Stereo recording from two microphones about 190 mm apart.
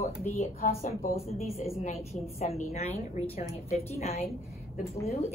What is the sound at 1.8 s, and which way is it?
Speech, 35° left (ahead or behind).